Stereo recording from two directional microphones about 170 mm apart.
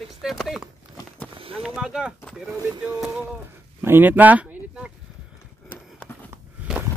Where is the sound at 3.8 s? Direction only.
10° right (ahead or behind).